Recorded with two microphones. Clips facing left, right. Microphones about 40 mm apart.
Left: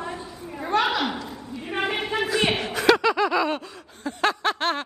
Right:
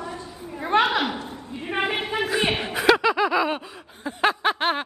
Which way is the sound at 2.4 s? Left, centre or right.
Centre.